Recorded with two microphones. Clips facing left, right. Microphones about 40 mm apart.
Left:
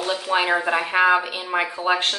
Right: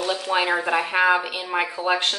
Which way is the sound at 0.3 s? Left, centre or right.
Centre.